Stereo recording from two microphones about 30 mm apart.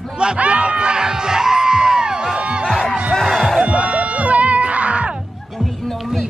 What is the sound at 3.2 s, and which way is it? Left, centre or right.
Music, centre.